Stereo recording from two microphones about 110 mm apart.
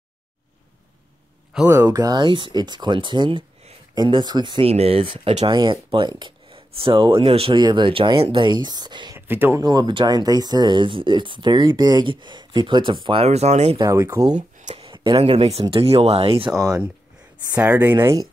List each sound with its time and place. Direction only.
1.7 s speech: 30° right (ahead or behind)
4.6 s speech: 65° right (ahead or behind)
7.5 s speech: 45° right (ahead or behind)
9.1 s speech: 20° right (ahead or behind)
9.6 s speech: 40° right (ahead or behind)
13.2 s speech: 80° right
13.7 s speech: 30° right (ahead or behind)
14.3 s a sound: 90° right
14.9 s speech: 55° right (ahead or behind)
16.5 s speech: 30° right (ahead or behind)
17.6 s speech: 20° right (ahead or behind)